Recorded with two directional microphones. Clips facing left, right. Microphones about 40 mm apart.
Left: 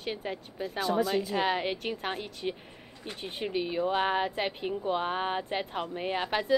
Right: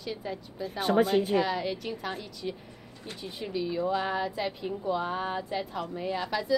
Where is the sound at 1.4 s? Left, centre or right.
Left.